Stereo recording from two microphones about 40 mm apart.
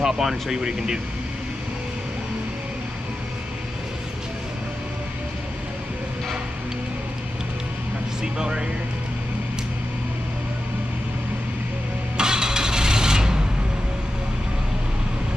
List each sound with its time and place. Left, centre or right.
0.0 s speech: centre
8.2 s speech: centre
12.2 s a sound: centre